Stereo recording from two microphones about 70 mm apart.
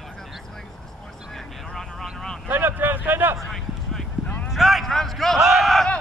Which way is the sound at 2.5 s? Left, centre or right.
Right.